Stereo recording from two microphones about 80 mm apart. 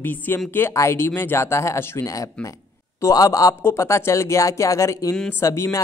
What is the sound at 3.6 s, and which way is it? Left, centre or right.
Speech, left.